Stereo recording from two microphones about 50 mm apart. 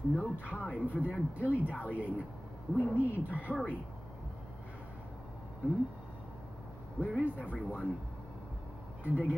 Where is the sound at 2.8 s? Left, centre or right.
Left.